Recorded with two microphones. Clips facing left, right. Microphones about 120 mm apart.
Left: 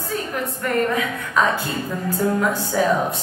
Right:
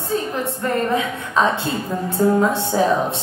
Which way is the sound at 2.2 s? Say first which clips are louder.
Right 5 dB; 30° right (ahead or behind).